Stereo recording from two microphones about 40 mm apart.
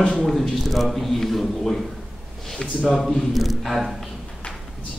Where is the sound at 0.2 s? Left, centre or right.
Centre.